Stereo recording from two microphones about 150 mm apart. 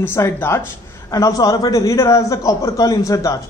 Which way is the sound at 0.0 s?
15° left (ahead or behind).